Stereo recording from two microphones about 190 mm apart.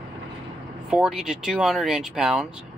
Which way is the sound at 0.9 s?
5° right (ahead or behind).